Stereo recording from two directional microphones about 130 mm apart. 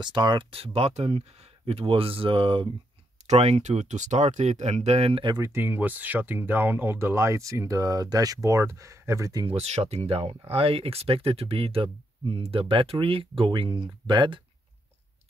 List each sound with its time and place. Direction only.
0.0 s speech: 35° right (ahead or behind)
3.3 s speech: 55° right (ahead or behind); by 5.4 s 40° right (ahead or behind)
5.4 s speech: 15° right (ahead or behind)
9.5 s speech: 55° right (ahead or behind); by 14.4 s 40° right (ahead or behind)